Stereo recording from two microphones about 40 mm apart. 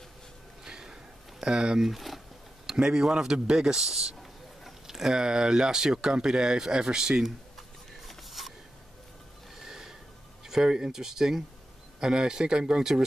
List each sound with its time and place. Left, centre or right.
0.7 s a sound: centre
1.4 s speech: right
1.8 s speech: centre
2.6 s speech: centre
8.1 s a sound: centre
9.6 s snort: centre
10.4 s speech: centre